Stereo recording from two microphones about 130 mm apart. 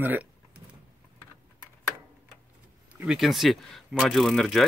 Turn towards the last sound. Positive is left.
turn(degrees=0)  # may be behind; listen again after turning